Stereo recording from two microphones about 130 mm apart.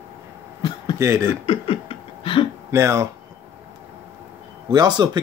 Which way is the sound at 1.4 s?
45° left (ahead or behind).